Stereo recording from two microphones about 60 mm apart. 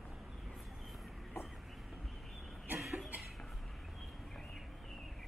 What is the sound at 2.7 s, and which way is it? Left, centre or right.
Cough, centre.